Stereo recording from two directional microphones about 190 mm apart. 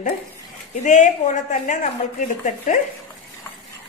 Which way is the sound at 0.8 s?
40° left (ahead or behind).